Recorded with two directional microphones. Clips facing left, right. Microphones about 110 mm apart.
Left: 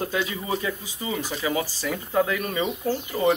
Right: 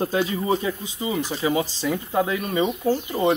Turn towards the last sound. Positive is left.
turn(degrees=-15)  # may be behind; listen again after turning